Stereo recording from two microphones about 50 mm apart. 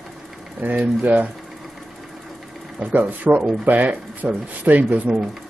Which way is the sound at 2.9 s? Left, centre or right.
Right.